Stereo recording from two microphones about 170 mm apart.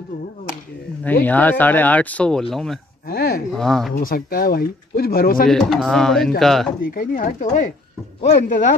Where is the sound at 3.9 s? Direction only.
60° left (ahead or behind).